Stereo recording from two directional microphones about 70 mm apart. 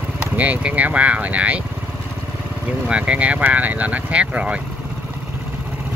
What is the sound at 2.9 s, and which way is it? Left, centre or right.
Speech, centre.